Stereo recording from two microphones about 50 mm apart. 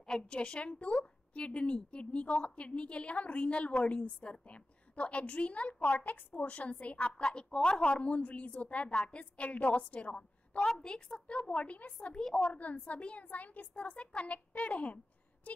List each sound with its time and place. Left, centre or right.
0.0 s a woman's voice: centre
10.6 s a woman's voice: centre
12.2 s a woman's voice: centre
12.5 s a woman's voice: left